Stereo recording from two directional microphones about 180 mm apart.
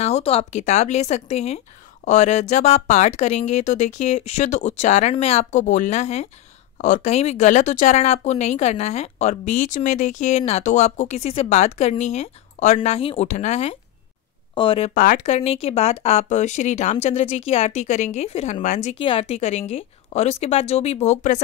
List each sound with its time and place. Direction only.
0.0 s speech: 35° left (ahead or behind)
15.0 s speech: 45° left (ahead or behind)
18.9 s speech: 30° left (ahead or behind)